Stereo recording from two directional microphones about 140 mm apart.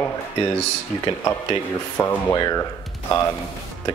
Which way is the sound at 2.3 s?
25° left (ahead or behind).